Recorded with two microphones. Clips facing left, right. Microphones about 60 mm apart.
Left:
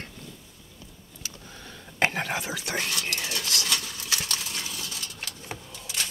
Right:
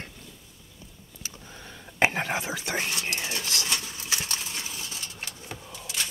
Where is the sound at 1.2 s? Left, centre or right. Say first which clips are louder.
Even; right.